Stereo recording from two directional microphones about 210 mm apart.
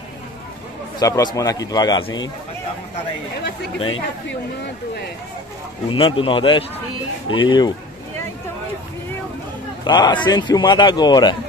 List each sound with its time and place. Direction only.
0.9 s a man's voice: 15° left (ahead or behind)
5.9 s a man's voice: 25° left (ahead or behind)
9.8 s a man's voice: 20° left (ahead or behind)